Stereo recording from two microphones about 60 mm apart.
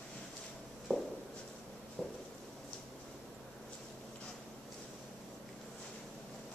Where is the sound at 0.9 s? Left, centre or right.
Centre.